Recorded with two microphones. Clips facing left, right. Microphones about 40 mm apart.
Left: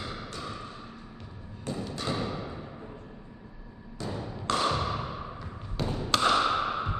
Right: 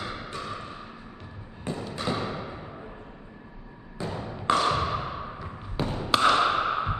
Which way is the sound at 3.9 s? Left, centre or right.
Centre.